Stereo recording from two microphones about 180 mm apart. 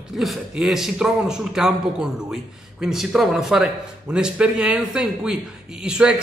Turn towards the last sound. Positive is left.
turn(degrees=-5)  # may be behind; listen again after turning